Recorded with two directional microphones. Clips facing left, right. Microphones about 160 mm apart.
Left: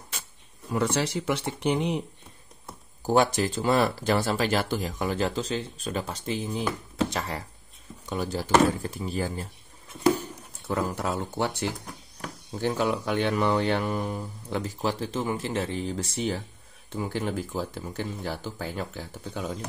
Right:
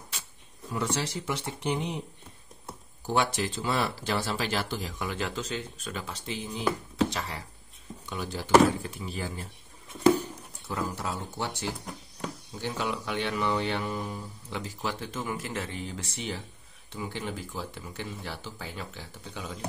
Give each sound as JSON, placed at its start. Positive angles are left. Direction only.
{"t": 0.7, "sound": "speech", "side_deg": 60}
{"t": 3.1, "sound": "speech", "side_deg": 45}
{"t": 10.7, "sound": "speech", "side_deg": 55}
{"t": 12.5, "sound": "speech", "side_deg": 45}
{"t": 14.8, "sound": "speech", "side_deg": 35}